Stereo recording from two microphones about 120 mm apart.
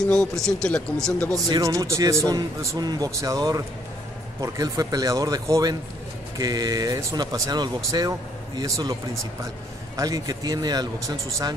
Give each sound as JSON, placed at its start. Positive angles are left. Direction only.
{"t": 0.1, "sound": "speech", "side_deg": 5}
{"t": 1.3, "sound": "speech", "side_deg": -30}
{"t": 9.9, "sound": "speech", "side_deg": -30}